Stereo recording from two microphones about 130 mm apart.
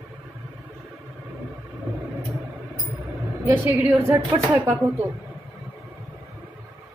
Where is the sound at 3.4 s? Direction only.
15° right (ahead or behind).